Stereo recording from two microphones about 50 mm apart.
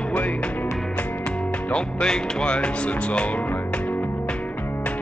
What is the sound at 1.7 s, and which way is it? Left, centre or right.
Music, centre.